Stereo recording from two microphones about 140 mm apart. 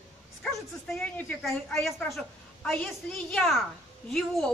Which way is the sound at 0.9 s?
10° left (ahead or behind).